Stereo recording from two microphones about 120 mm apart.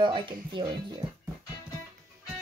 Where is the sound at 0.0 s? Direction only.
45° right (ahead or behind).